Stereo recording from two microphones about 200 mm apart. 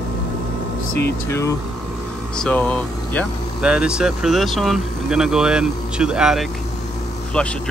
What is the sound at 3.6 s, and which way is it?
Speech, 5° right (ahead or behind).